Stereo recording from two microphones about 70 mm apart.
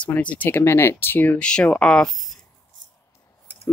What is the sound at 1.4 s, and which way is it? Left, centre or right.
Speech, centre.